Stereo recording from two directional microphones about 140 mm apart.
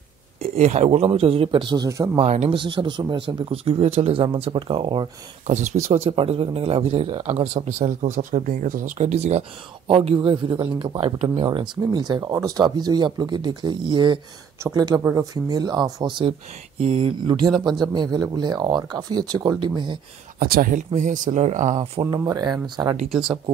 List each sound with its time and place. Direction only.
0.6 s speech: 55° right (ahead or behind); by 2.0 s 25° right (ahead or behind)
2.1 s speech: 50° right (ahead or behind)
2.6 s speech: 35° right (ahead or behind)
5.5 s speech: 60° right (ahead or behind)
9.8 s speech: 40° right (ahead or behind)
20.3 s speech: 90° right; by 21.8 s 55° right (ahead or behind)
22.0 s speech: 25° right (ahead or behind)
23.2 s speech: 40° right (ahead or behind)